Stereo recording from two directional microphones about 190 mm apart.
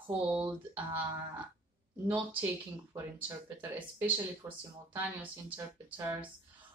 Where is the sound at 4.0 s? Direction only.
10° right (ahead or behind).